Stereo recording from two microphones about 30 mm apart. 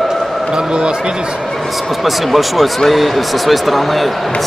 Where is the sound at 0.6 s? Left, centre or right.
Right.